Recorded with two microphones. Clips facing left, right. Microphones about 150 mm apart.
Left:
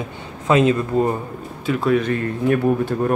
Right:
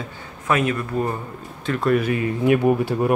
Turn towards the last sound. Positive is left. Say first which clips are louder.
# even
turn(degrees=-10)  # may be behind; listen again after turning